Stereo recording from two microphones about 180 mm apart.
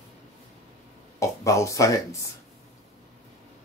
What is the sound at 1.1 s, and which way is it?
Speech, 15° left (ahead or behind).